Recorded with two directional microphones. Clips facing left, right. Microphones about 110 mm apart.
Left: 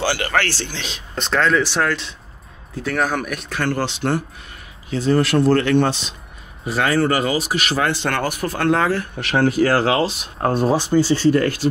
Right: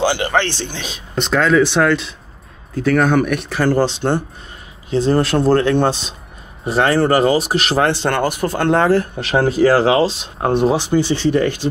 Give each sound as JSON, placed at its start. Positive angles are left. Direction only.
{"t": 0.0, "sound": "speech", "side_deg": -20}
{"t": 1.3, "sound": "speech", "side_deg": -5}
{"t": 3.7, "sound": "a man's voice", "side_deg": -30}